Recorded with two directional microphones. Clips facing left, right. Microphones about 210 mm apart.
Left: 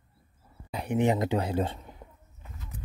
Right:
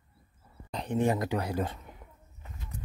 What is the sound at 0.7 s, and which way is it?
Speech, 10° left (ahead or behind).